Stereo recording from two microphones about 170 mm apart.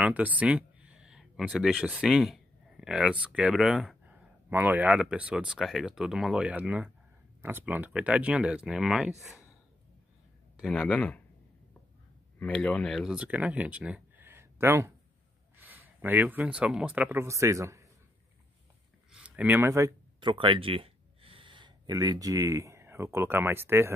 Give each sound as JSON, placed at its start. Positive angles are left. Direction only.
{"t": 0.0, "sound": "speech", "side_deg": -10}
{"t": 10.6, "sound": "speech", "side_deg": 5}
{"t": 12.4, "sound": "speech", "side_deg": 10}
{"t": 19.1, "sound": "speech", "side_deg": -10}